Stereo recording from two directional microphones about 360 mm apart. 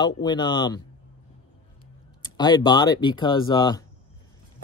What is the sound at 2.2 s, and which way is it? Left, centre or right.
Speech, centre.